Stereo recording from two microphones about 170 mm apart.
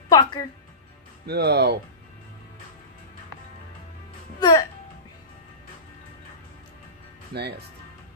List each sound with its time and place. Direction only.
0.1 s music: 25° left (ahead or behind)
1.2 s speech: 70° right (ahead or behind)
4.4 s music: 25° left (ahead or behind)
7.3 s speech: 70° right (ahead or behind)